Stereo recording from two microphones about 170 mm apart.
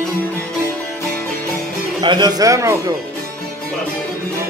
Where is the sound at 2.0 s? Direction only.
25° right (ahead or behind).